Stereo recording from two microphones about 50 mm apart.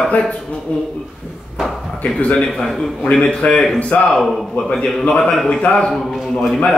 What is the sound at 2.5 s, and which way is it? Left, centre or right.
Speech, centre.